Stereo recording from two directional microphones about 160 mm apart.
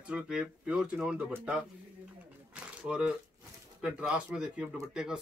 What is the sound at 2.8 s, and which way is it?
Speech, 5° right (ahead or behind).